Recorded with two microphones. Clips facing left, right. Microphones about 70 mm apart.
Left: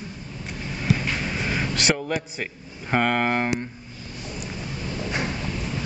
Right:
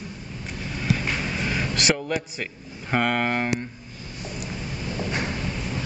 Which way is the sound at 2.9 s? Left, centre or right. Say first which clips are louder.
Left 1 dB; centre.